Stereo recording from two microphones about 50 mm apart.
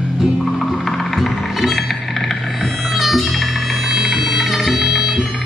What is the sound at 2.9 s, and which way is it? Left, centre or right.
Music, centre.